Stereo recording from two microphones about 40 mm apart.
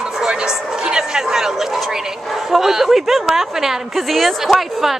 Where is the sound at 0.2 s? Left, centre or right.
Centre.